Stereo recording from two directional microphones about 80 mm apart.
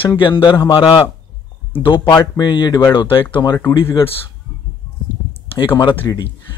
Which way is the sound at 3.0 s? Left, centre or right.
Left.